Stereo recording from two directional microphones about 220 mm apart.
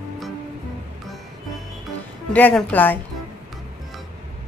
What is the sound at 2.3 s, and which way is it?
Speech, 5° left (ahead or behind).